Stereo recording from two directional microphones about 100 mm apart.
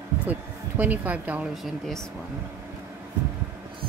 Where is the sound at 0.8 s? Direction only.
15° right (ahead or behind).